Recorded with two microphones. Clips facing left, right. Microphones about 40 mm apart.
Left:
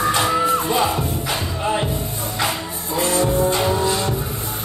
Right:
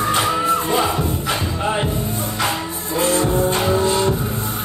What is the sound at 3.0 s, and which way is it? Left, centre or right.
Music, right.